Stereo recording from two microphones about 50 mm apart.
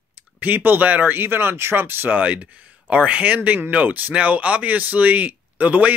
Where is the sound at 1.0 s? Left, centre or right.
Right.